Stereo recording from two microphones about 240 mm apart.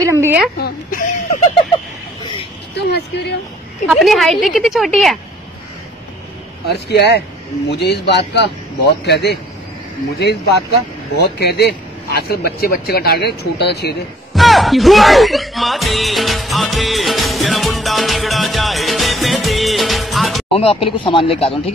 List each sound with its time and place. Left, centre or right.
0.0 s speech: centre
0.6 s speech: left
2.7 s a man's voice: left
3.9 s speech: centre
6.9 s a man's voice: left
14.3 s speech: centre
20.5 s speech: left